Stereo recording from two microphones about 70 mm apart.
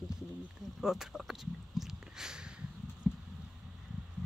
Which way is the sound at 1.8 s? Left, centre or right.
Centre.